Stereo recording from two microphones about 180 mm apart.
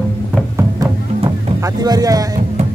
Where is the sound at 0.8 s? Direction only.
20° right (ahead or behind).